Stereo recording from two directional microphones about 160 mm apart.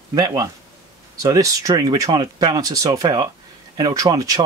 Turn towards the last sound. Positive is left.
turn(degrees=-25)  # may be behind; listen again after turning